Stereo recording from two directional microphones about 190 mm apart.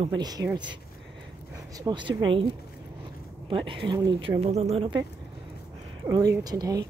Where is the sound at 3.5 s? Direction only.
25° right (ahead or behind).